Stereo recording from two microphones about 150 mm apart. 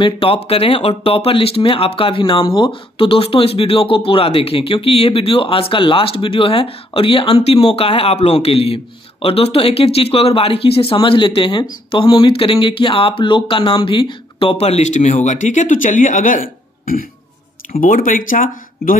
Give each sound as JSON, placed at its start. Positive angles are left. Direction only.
{"t": 0.0, "sound": "speech", "side_deg": 40}